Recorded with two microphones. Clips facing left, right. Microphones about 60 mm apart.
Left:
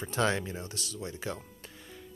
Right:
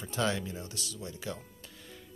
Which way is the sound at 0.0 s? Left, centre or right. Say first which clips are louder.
Left 3 dB; left.